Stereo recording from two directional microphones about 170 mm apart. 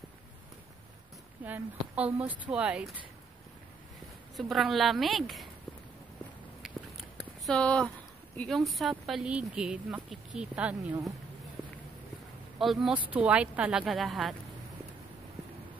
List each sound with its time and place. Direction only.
1.4 s a woman's voice: 10° right (ahead or behind)
4.4 s speech: centre (ahead or behind)
6.6 s a sound: centre (ahead or behind)
8.4 s speech: centre (ahead or behind)
12.5 s speech: centre (ahead or behind)